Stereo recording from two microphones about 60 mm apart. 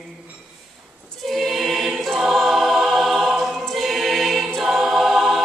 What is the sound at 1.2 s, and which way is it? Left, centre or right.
Choir, centre.